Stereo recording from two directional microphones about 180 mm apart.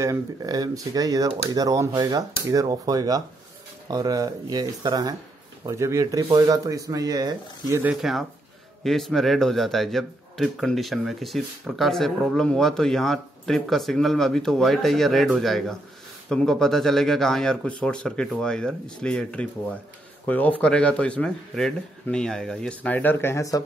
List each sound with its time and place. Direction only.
0.0 s speech: 20° right (ahead or behind)
7.8 s speech: 5° right (ahead or behind); by 23.6 s 15° left (ahead or behind)